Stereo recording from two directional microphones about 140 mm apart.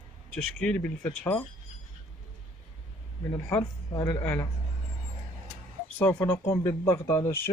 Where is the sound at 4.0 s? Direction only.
15° left (ahead or behind).